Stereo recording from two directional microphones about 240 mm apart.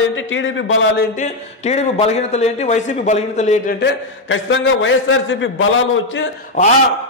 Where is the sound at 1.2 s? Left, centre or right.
Left.